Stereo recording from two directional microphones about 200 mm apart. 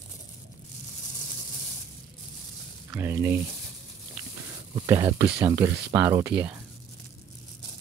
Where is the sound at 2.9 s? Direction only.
15° right (ahead or behind).